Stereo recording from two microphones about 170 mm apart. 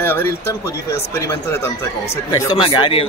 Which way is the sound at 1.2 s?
15° left (ahead or behind).